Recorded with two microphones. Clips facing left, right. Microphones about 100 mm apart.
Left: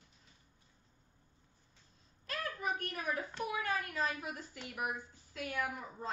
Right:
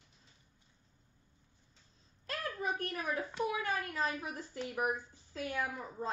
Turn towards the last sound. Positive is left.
turn(degrees=-30)  # may be behind; listen again after turning